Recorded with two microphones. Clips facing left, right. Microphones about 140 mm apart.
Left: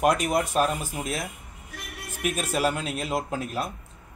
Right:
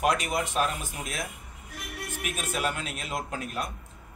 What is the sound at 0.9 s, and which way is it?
A man's voice, centre (ahead or behind).